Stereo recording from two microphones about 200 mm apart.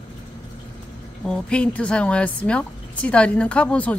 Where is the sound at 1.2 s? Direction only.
5° left (ahead or behind).